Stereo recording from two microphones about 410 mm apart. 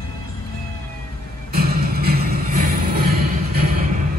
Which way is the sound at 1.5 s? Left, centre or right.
Right.